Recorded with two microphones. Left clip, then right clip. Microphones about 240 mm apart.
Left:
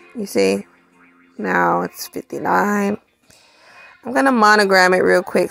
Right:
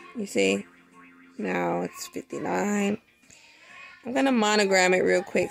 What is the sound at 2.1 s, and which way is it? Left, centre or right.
Speech, centre.